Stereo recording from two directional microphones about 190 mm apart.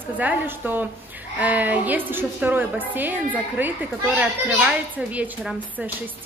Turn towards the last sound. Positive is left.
turn(degrees=-5)  # may be behind; listen again after turning